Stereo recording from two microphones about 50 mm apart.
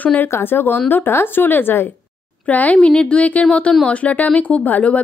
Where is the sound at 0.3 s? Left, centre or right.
Left.